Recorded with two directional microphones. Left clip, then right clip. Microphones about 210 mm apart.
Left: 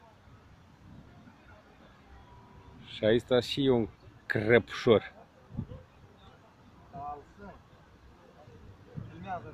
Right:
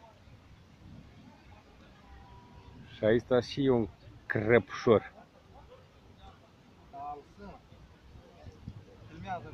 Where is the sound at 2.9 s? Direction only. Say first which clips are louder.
Left 1 dB; 10° left (ahead or behind).